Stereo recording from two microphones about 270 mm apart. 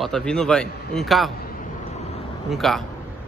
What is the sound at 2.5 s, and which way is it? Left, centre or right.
Speech, centre.